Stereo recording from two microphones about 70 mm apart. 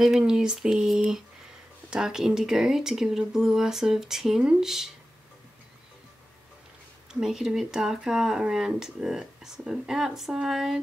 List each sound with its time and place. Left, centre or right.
0.3 s speech: centre
7.1 s speech: centre